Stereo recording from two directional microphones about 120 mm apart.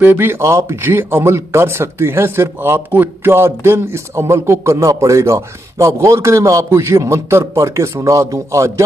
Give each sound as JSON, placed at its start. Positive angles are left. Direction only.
{"t": 0.0, "sound": "speech", "side_deg": -15}